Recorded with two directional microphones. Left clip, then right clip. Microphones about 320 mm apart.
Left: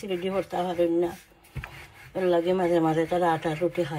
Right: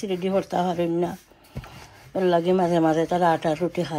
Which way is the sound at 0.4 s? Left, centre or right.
Right.